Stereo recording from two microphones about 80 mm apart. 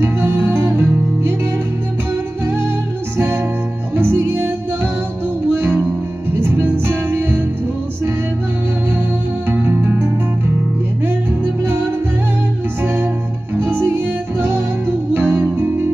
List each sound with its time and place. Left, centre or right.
0.0 s music: right
3.2 s music: right
5.5 s music: right
9.5 s music: right